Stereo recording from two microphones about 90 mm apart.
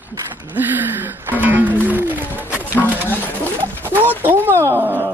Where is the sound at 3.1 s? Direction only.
20° left (ahead or behind).